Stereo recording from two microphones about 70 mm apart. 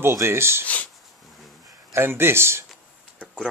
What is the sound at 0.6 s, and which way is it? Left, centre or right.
Speech, left.